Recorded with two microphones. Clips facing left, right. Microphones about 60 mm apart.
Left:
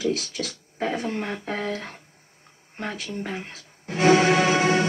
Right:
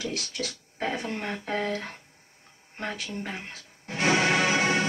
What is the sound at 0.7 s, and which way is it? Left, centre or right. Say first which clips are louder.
Speech: left 4 dB; centre.